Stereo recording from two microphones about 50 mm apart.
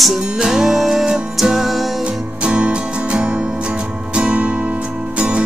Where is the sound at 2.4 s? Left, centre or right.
Right.